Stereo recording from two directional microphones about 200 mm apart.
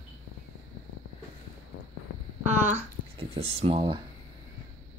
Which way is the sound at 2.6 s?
30° right (ahead or behind).